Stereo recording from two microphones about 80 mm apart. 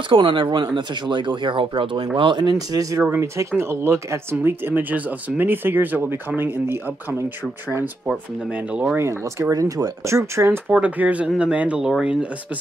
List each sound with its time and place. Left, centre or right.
0.1 s speech: right
2.7 s speech: right
3.3 s speech: right
8.9 s speech: right
9.5 s speech: right
10.7 s speech: centre